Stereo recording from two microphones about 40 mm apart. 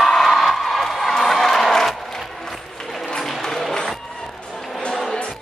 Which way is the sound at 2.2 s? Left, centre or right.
Centre.